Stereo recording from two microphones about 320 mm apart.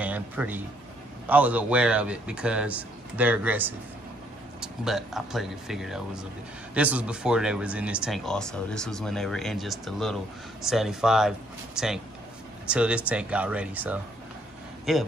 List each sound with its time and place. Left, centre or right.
0.0 s a man's voice: centre